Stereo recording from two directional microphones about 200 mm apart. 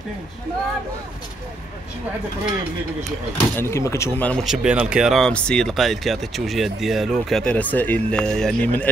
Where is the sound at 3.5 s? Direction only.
15° left (ahead or behind).